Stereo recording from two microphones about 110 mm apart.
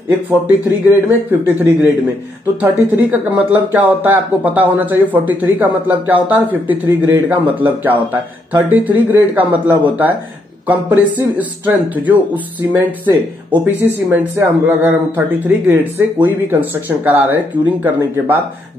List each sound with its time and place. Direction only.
0.5 s speech: 15° right (ahead or behind)
13.5 s speech: 15° right (ahead or behind)